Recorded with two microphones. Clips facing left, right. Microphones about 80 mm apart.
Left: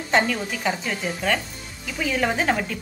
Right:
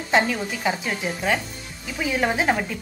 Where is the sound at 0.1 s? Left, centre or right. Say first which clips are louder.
Even; centre.